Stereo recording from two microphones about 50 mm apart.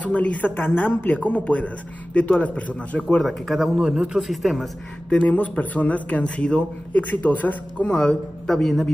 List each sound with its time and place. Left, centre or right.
0.0 s speech: left
0.6 s speech: left
3.2 s speech: centre
3.8 s a man's voice: centre
4.2 s speech: centre
5.1 s speech: left
7.8 s a man's voice: centre